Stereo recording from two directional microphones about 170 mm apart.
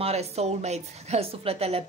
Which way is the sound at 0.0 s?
40° right (ahead or behind).